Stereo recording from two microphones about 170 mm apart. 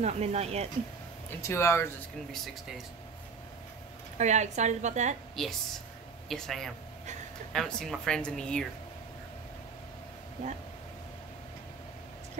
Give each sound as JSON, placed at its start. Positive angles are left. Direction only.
{"t": 0.0, "sound": "speech", "side_deg": -40}
{"t": 1.4, "sound": "speech", "side_deg": 15}
{"t": 4.2, "sound": "a woman's voice", "side_deg": -45}
{"t": 5.3, "sound": "a woman's voice", "side_deg": 0}